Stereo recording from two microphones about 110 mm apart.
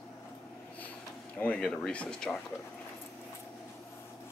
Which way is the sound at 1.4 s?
10° left (ahead or behind).